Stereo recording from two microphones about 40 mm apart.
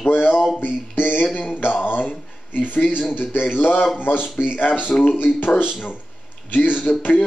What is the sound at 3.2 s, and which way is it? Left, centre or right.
Speech, left.